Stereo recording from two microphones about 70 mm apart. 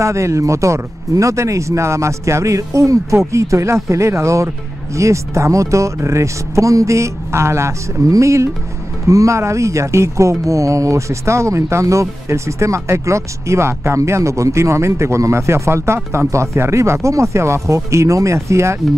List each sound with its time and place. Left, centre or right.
0.0 s speech: right